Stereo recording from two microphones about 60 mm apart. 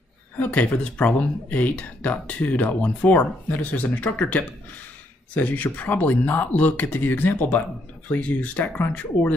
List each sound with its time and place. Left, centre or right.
0.4 s speech: left